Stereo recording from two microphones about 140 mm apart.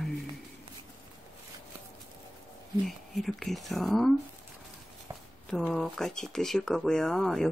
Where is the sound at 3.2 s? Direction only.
Centre (ahead or behind).